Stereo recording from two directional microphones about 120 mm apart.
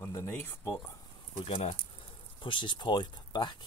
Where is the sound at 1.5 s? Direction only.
60° left (ahead or behind).